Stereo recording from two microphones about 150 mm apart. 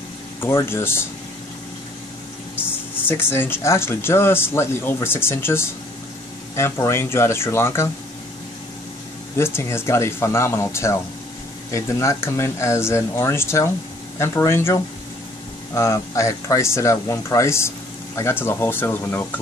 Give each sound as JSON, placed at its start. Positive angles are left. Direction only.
{"t": 0.4, "sound": "speech", "side_deg": 15}
{"t": 2.6, "sound": "speech", "side_deg": 15}
{"t": 9.4, "sound": "speech", "side_deg": 15}